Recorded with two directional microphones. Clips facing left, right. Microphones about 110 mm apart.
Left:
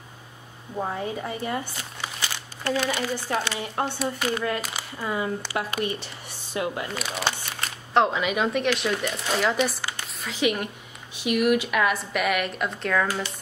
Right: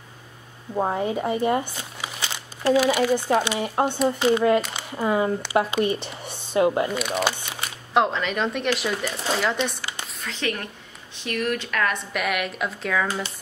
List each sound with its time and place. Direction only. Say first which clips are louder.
0.7 s speech: right 5 dB; 25° right (ahead or behind)
4.6 s speech: right 7 dB; 5° left (ahead or behind)
4.9 s speech: right 6 dB; 25° right (ahead or behind)
6.9 s speech: right 4 dB; centre (ahead or behind)
8.1 s a woman's voice: left 1 dB; 5° left (ahead or behind)